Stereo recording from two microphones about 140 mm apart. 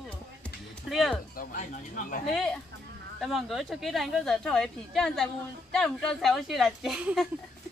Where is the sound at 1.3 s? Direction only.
85° left.